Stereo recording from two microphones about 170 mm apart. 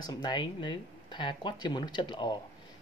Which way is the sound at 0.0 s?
25° left (ahead or behind).